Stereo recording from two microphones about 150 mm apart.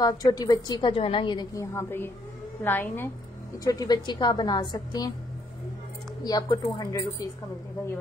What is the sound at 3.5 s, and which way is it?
A woman's voice, 25° left (ahead or behind).